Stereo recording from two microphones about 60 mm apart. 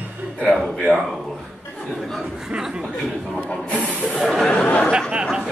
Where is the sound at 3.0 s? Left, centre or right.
Centre.